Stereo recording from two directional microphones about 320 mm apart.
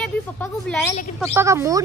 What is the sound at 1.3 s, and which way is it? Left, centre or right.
Speech, centre.